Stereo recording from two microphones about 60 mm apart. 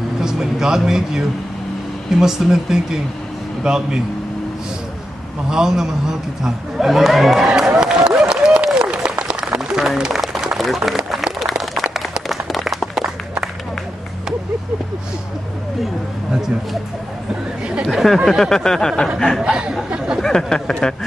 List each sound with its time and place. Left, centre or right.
0.2 s a man's voice: centre
5.5 s a man's voice: centre
8.3 s a sound: centre
17.3 s chatter: centre
17.9 s speech: centre
19.4 s speech: centre
20.2 s a sound: centre